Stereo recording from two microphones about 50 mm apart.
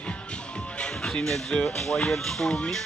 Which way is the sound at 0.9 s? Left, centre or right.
Centre.